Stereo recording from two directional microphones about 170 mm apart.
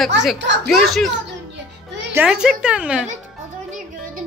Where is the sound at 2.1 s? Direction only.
5° right (ahead or behind).